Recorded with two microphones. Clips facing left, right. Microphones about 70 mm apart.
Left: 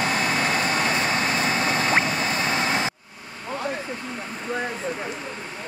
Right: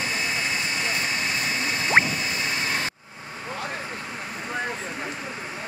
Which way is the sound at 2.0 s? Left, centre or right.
Left.